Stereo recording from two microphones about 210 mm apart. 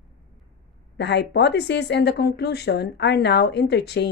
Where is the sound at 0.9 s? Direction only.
55° left (ahead or behind).